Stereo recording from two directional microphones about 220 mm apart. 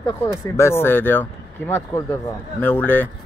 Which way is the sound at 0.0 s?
15° left (ahead or behind).